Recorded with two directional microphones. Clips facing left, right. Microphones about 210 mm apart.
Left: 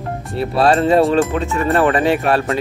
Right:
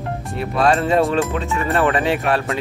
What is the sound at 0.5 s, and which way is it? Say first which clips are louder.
Speech: left 3 dB; 35° left (ahead or behind).